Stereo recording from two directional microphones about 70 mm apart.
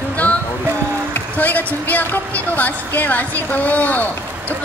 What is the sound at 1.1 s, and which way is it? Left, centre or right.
A woman's voice, left.